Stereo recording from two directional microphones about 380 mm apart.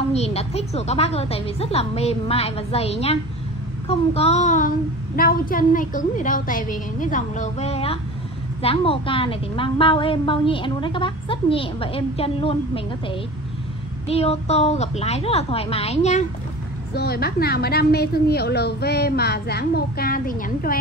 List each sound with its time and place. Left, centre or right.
0.1 s a woman's voice: centre
3.8 s child singing: centre
8.6 s a woman's voice: centre
16.9 s child singing: left